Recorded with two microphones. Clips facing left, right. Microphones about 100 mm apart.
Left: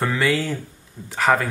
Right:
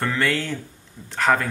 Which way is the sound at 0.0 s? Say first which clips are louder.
Left 2 dB; 5° left (ahead or behind).